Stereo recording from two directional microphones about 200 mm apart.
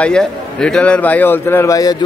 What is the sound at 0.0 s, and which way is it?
A man's voice, 5° left (ahead or behind).